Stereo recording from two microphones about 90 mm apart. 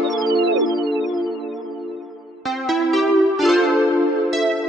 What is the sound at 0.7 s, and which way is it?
Music, 60° left (ahead or behind).